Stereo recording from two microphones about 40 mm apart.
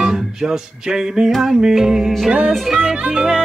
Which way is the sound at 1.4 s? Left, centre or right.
Centre.